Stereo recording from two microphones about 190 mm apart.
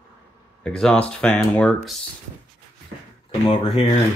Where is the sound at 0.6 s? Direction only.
5° left (ahead or behind).